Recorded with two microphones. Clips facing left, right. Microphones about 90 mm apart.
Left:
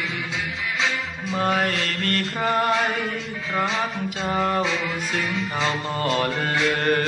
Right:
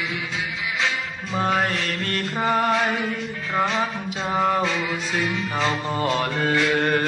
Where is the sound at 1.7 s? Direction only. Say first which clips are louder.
Left 1 dB; 60° left (ahead or behind).